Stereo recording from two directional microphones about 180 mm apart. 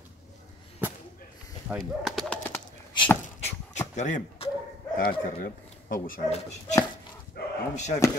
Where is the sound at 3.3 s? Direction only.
35° left (ahead or behind).